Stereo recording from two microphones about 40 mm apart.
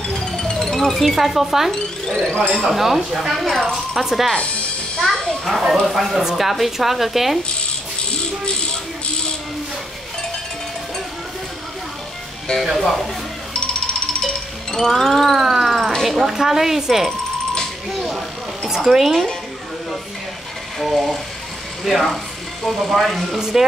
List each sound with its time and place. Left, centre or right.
0.4 s speech: centre
1.7 s speech: centre
2.7 s speech: centre
5.1 s speech: centre
5.6 s speech: centre
12.6 s speech: centre
13.5 s music: left
14.8 s speech: centre
17.9 s a sound: centre
18.9 s speech: centre
20.8 s speech: centre